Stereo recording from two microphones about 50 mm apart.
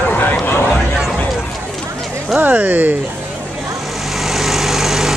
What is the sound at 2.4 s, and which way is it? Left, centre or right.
Speech, right.